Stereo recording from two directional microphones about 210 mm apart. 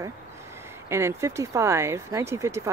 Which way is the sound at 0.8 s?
10° right (ahead or behind).